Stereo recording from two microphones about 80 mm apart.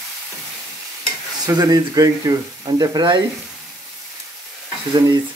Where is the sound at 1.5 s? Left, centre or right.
Right.